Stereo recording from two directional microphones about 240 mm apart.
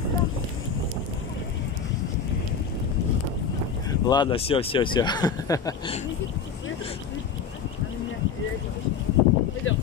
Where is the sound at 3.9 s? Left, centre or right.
Centre.